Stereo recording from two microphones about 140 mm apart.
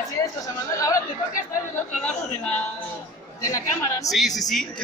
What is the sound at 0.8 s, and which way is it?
Speech, 25° left (ahead or behind).